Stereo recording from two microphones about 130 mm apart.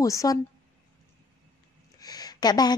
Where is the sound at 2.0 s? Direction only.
30° left (ahead or behind).